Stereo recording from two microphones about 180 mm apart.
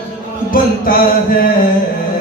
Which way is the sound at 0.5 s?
55° left (ahead or behind).